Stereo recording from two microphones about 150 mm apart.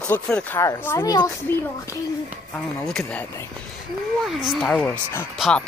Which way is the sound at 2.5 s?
5° left (ahead or behind).